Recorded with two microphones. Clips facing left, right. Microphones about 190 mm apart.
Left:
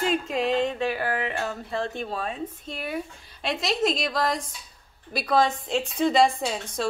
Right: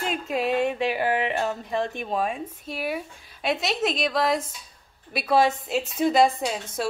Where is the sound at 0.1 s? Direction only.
5° right (ahead or behind).